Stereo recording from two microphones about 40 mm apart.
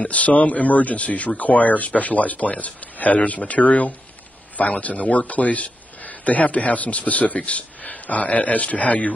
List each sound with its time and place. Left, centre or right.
0.0 s a man's voice: left